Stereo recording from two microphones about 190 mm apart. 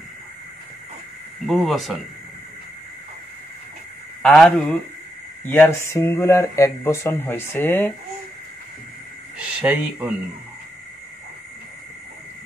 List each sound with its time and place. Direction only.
1.5 s speech: centre (ahead or behind)
4.2 s speech: 5° left (ahead or behind)
9.6 s speech: 10° right (ahead or behind)